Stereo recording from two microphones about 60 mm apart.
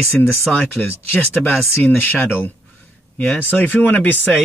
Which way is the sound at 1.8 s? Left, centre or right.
Left.